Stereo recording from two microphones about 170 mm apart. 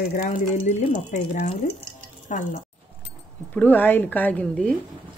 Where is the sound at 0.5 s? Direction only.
40° left (ahead or behind).